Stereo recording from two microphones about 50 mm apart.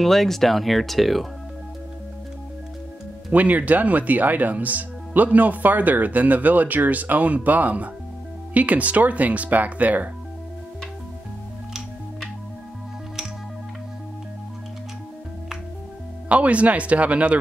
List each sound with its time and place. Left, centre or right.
0.0 s speech: centre
3.3 s speech: right
16.3 s speech: right